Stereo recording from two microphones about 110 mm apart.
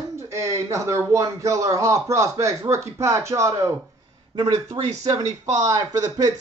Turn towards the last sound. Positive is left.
turn(degrees=-35)  # may be behind; listen again after turning